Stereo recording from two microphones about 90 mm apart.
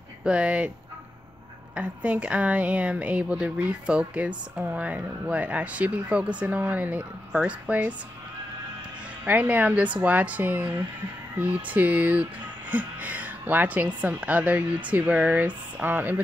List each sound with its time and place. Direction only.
0.2 s a woman's voice: 10° right (ahead or behind)
1.8 s a woman's voice: 15° right (ahead or behind)
9.2 s a woman's voice: 20° right (ahead or behind)